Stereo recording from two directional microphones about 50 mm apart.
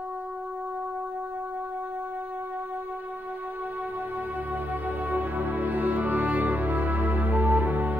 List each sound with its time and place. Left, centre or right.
4.8 s music: right